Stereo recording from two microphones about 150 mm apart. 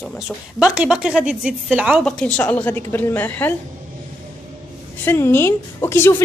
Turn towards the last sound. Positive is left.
turn(degrees=15)  # may be behind; listen again after turning